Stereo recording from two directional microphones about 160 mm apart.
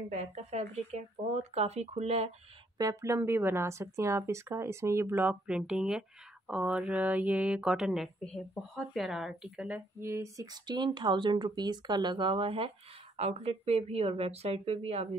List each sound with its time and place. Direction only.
0.1 s speech: 45° right (ahead or behind)
2.8 s speech: 20° right (ahead or behind); by 15.0 s 40° right (ahead or behind)